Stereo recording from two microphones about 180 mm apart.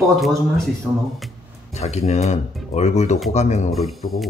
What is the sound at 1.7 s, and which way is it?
Speech, 35° left (ahead or behind).